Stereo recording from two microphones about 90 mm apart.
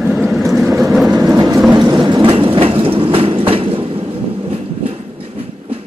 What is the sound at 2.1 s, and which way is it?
Train, 75° right (ahead or behind).